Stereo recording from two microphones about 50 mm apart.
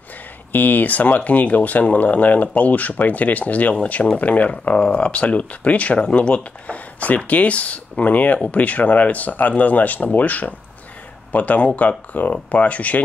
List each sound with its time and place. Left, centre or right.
0.5 s speech: left